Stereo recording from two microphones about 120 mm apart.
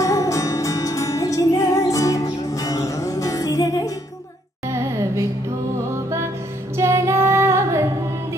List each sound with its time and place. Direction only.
0.0 s music: 30° left (ahead or behind)
6.8 s female singing: 25° right (ahead or behind)